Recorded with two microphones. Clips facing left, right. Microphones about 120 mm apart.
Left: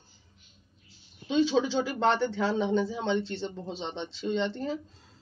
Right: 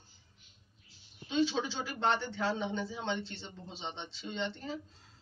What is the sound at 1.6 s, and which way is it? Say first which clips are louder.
Speech: left 7 dB; 90° left.